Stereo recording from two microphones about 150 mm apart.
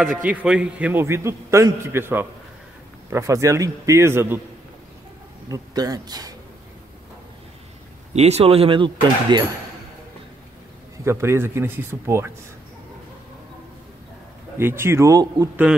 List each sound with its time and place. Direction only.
0.2 s a man's voice: 10° right (ahead or behind)
5.5 s a man's voice: 25° right (ahead or behind)
8.1 s speech: 45° right (ahead or behind)
11.1 s a man's voice: 15° right (ahead or behind)
14.6 s a man's voice: 15° right (ahead or behind)